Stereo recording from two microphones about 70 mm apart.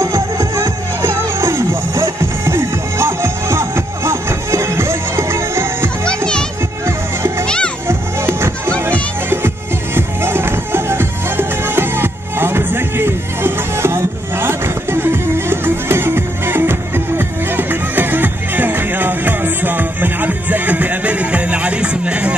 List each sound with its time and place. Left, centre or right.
0.0 s music: right
6.0 s children playing: centre
7.4 s music: centre
7.9 s music: right
9.9 s music: right; by 22.3 s centre